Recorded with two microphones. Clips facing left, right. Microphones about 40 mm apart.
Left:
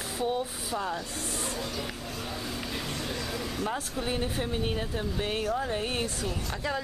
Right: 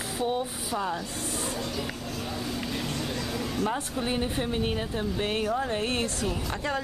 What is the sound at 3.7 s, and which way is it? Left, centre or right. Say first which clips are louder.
Speech: right 2 dB; centre.